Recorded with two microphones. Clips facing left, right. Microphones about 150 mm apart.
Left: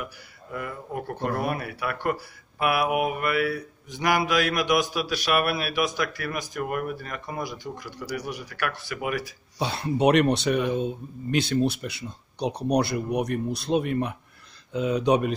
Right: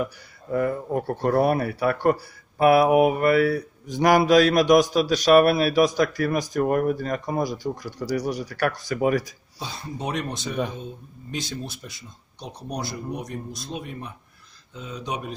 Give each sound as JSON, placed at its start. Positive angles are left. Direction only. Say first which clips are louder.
{"t": 0.0, "sound": "speech", "louder": "right 8 dB", "side_deg": -35}
{"t": 9.6, "sound": "speech", "louder": "left 9 dB", "side_deg": 70}